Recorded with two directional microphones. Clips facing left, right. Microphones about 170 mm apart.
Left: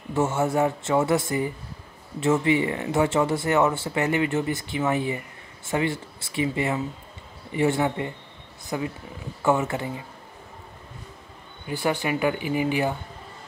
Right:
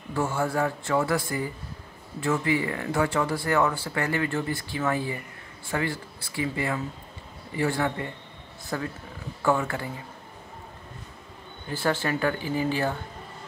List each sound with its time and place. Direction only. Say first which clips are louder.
0.1 s speech: left 4 dB; 20° left (ahead or behind)
11.6 s speech: left 1 dB; 15° left (ahead or behind)